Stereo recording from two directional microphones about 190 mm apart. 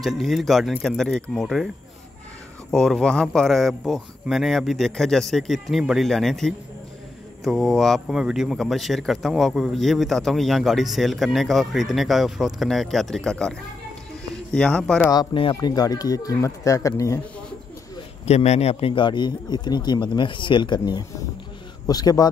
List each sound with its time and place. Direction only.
0.0 s speech: centre (ahead or behind)
2.7 s speech: centre (ahead or behind)
15.0 s speech: 25° left (ahead or behind)
18.2 s a man's voice: 35° left (ahead or behind)